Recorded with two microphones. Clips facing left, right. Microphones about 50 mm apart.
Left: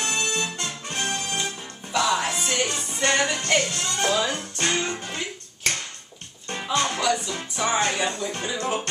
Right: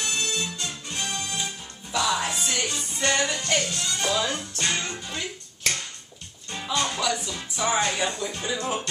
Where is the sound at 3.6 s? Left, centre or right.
Left.